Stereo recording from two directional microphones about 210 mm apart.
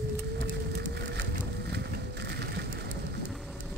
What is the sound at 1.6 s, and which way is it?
Vehicle, 50° right (ahead or behind).